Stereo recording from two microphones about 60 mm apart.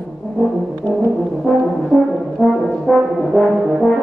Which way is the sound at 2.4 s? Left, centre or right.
Centre.